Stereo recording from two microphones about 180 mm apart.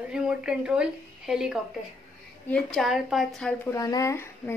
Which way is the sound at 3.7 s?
20° left (ahead or behind).